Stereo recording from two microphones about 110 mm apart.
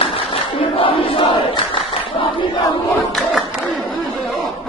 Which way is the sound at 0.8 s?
50° left (ahead or behind).